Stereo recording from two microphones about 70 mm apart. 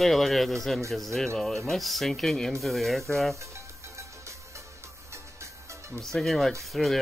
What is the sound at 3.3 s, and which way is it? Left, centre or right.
Music, right.